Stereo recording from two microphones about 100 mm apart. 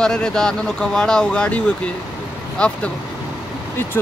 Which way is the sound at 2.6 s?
10° left (ahead or behind).